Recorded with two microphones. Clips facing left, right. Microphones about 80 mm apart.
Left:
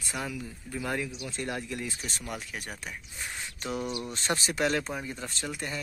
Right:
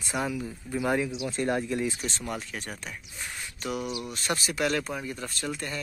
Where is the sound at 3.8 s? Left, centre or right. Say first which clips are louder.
Even; centre.